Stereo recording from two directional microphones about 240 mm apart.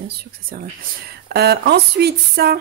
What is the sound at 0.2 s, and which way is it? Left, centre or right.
Speech, right.